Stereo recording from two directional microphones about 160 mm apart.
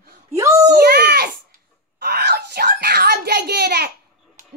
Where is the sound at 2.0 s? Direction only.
90° right.